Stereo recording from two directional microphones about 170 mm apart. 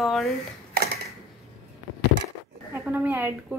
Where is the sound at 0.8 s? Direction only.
65° right (ahead or behind).